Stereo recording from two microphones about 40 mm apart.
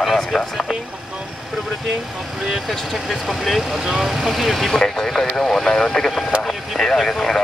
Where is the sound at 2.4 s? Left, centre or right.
Centre.